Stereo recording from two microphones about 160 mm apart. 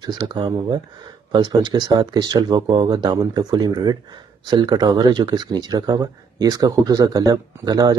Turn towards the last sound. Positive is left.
turn(degrees=-25)  # may be behind; listen again after turning